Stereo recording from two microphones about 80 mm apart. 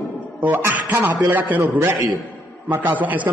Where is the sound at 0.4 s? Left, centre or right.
Right.